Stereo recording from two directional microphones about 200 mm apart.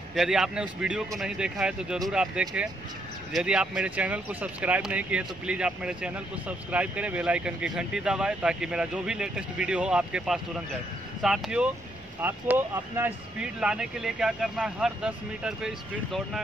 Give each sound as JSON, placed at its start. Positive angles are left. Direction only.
{"t": 0.1, "sound": "speech", "side_deg": 0}